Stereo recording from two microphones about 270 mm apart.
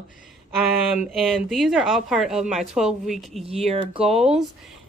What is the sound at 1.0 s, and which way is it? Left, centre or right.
Speech, centre.